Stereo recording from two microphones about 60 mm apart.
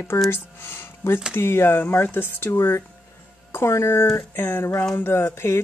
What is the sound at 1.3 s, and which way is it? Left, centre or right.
Speech, left.